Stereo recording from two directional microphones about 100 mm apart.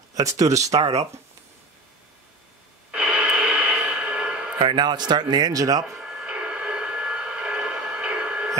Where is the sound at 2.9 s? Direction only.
10° right (ahead or behind).